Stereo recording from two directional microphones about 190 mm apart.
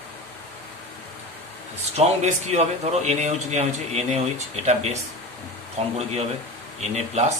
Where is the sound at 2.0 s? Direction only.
35° right (ahead or behind).